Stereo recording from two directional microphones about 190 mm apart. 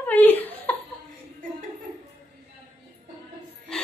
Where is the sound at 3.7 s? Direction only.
5° left (ahead or behind).